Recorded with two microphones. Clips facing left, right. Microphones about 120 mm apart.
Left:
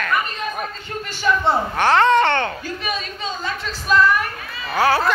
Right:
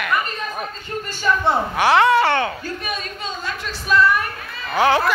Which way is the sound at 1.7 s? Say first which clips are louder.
Even; 10° right (ahead or behind).